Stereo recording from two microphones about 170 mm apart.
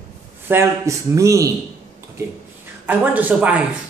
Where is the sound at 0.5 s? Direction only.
15° right (ahead or behind).